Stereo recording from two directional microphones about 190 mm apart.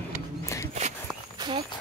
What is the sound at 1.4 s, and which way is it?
Walk, 25° right (ahead or behind).